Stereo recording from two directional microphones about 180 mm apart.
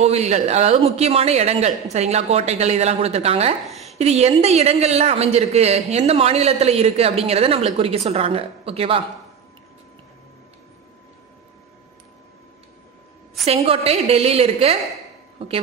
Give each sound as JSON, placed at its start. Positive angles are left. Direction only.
{"t": 0.0, "sound": "a woman's voice", "side_deg": -35}
{"t": 3.6, "sound": "a sound", "side_deg": 0}
{"t": 4.0, "sound": "a woman's voice", "side_deg": -35}
{"t": 13.5, "sound": "a woman's voice", "side_deg": -35}